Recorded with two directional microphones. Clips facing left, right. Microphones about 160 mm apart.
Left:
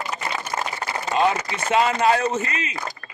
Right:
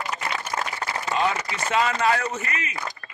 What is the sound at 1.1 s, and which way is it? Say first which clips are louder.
Speech: left 4 dB; 25° left (ahead or behind).